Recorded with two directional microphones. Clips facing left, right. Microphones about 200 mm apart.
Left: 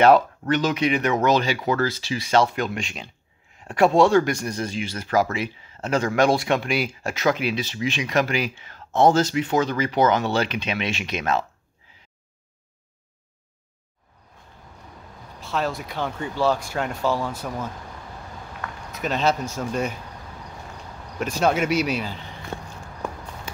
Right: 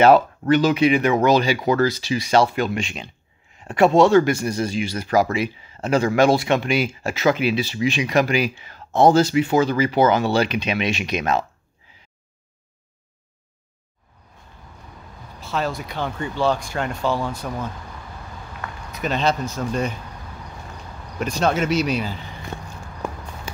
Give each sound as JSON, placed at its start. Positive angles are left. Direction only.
{"t": 0.0, "sound": "speech", "side_deg": -5}
{"t": 15.4, "sound": "speech", "side_deg": 0}
{"t": 18.9, "sound": "speech", "side_deg": 0}
{"t": 21.2, "sound": "speech", "side_deg": 5}